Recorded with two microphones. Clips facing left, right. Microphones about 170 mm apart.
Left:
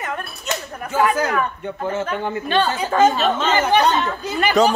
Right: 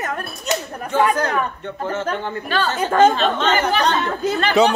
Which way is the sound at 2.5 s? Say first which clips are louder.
Left 3 dB; 25° left (ahead or behind).